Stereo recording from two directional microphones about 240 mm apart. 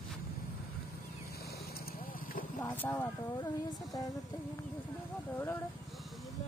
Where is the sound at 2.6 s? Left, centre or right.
Centre.